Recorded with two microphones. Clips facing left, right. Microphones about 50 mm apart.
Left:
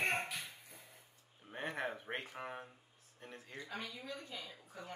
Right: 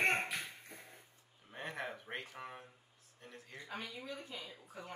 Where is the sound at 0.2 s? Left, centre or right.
Right.